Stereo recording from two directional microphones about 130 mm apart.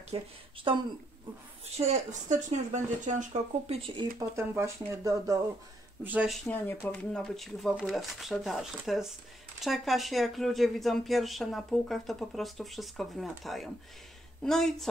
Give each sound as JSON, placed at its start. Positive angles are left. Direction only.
{"t": 0.1, "sound": "speech", "side_deg": -50}
{"t": 0.7, "sound": "speech", "side_deg": -40}
{"t": 1.8, "sound": "speech", "side_deg": -65}
{"t": 4.2, "sound": "speech", "side_deg": -20}
{"t": 6.2, "sound": "speech", "side_deg": 0}
{"t": 6.5, "sound": "speech", "side_deg": 15}
{"t": 7.1, "sound": "speech", "side_deg": 5}